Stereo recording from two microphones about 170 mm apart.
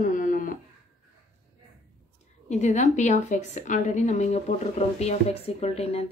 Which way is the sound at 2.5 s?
45° left (ahead or behind).